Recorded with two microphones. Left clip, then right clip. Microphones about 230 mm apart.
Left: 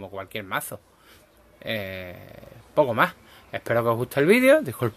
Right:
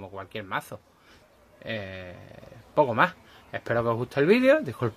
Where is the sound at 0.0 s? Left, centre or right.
Centre.